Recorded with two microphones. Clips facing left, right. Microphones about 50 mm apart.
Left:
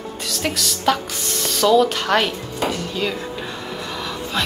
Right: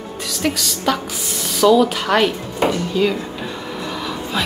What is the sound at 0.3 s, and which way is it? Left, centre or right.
Speech, centre.